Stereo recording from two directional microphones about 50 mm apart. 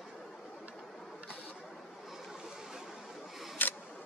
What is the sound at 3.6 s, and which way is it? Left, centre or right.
Camera, left.